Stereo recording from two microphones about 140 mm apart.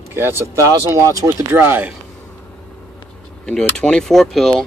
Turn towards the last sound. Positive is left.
turn(degrees=5)  # may be behind; listen again after turning